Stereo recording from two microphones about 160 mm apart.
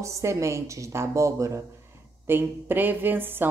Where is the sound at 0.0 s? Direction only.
20° right (ahead or behind).